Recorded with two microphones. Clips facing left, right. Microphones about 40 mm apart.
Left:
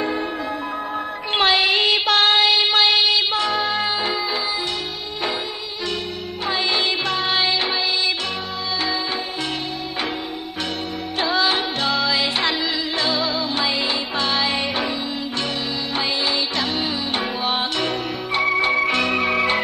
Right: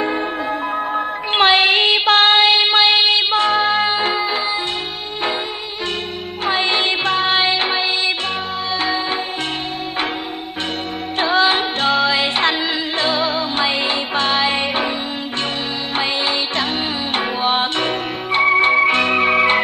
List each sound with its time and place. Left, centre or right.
0.0 s music: right
6.4 s music: right
11.1 s music: right
16.0 s music: right